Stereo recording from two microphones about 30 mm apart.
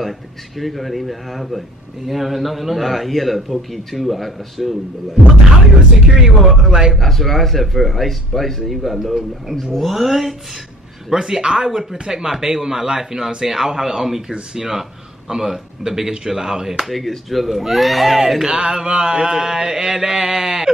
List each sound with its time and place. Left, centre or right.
0.6 s a man's voice: centre
6.1 s speech: centre
6.7 s a sound: right
7.0 s a man's voice: centre
9.0 s a man's voice: centre
11.1 s speech: centre
14.5 s a sound: right
15.2 s speech: centre
16.8 s a man's voice: centre
18.4 s a sound: right